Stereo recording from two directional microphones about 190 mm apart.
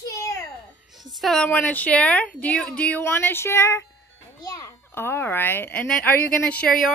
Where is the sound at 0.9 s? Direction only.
Centre (ahead or behind).